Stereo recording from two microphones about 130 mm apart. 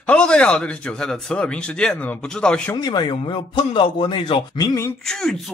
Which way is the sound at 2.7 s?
35° left (ahead or behind).